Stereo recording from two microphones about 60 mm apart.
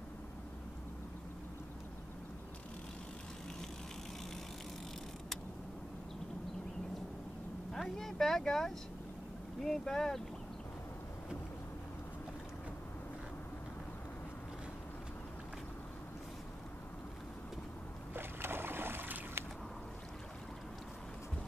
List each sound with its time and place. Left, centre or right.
7.7 s speech: centre
18.1 s boat: right